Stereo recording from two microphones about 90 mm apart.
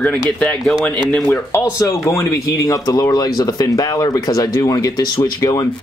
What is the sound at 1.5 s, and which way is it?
Speech, 35° left (ahead or behind).